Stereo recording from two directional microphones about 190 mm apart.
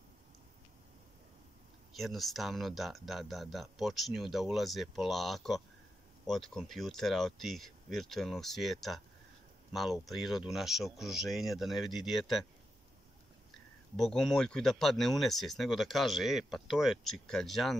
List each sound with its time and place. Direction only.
2.0 s speech: centre (ahead or behind)
13.9 s speech: centre (ahead or behind)